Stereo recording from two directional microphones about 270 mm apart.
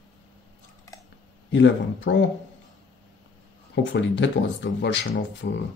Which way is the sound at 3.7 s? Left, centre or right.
Left.